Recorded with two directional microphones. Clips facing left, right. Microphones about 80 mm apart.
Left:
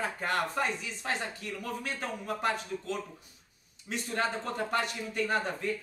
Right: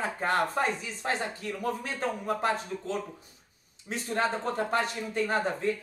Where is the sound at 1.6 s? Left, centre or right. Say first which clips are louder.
Right 6 dB; right.